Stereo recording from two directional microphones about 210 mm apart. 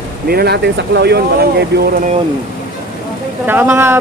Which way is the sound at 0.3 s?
50° right (ahead or behind).